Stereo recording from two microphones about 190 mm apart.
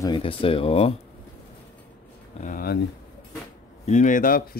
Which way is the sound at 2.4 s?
50° left (ahead or behind).